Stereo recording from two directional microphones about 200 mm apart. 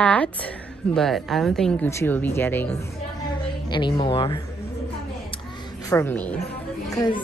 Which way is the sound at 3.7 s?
25° left (ahead or behind).